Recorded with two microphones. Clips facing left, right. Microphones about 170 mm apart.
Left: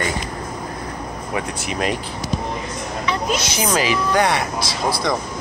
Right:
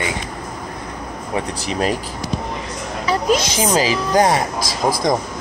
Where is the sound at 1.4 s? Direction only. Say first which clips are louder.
Right 3 dB; 35° right (ahead or behind).